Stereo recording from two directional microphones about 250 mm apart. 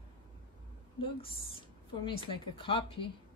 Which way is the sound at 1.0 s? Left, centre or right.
Left.